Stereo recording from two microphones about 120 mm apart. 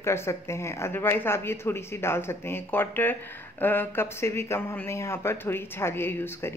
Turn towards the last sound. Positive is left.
turn(degrees=20)  # may be behind; listen again after turning